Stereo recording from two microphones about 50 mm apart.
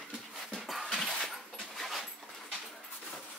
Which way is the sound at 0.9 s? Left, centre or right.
Centre.